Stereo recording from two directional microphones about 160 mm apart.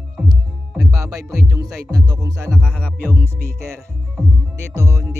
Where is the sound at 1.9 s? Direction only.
20° right (ahead or behind).